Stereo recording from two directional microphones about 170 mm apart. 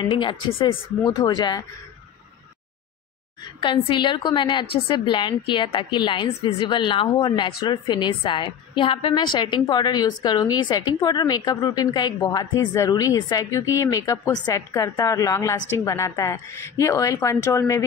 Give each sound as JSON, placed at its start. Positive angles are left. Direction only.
{"t": 0.1, "sound": "a woman's voice", "side_deg": 30}
{"t": 3.6, "sound": "a woman's voice", "side_deg": 30}